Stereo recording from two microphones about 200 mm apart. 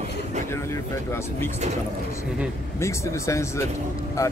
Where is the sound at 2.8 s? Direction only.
15° left (ahead or behind).